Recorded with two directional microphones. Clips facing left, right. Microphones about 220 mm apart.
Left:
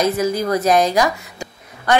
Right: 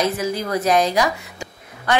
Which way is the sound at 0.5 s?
45° left (ahead or behind).